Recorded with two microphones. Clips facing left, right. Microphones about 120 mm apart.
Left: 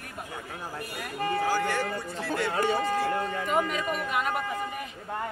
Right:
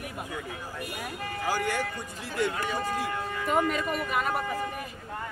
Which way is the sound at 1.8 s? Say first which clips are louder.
Left 3 dB; 40° left (ahead or behind).